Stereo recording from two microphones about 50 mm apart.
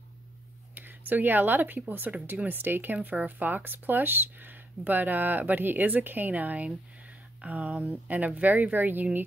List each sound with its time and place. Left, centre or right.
0.7 s speech: right